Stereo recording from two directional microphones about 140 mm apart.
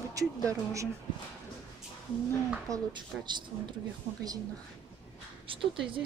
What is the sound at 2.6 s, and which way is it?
Speech, 30° right (ahead or behind).